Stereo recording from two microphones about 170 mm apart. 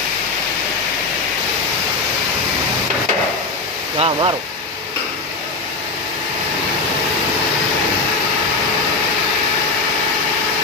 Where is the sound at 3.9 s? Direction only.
30° right (ahead or behind).